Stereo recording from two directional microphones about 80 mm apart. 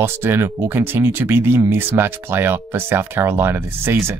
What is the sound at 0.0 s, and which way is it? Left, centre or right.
Speech, right.